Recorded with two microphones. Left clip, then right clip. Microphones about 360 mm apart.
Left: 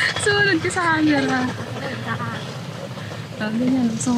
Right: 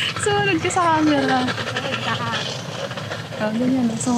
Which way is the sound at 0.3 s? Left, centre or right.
Centre.